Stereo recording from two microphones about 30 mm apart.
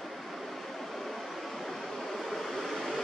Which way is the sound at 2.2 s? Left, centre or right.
Centre.